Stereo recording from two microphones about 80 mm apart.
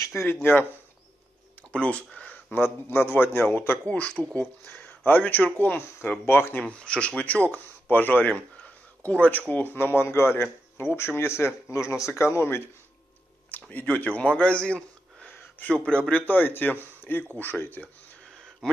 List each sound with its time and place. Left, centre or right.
0.0 s speech: left
1.7 s speech: centre
2.5 s speech: left
3.8 s speech: centre
6.6 s a man's voice: centre; by 12.6 s left
13.5 s speech: left
18.6 s a sound: centre